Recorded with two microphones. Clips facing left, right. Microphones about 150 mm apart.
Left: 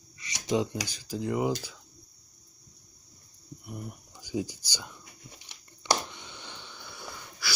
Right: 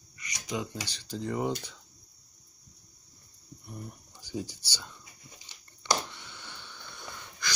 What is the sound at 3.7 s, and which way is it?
Speech, 10° left (ahead or behind).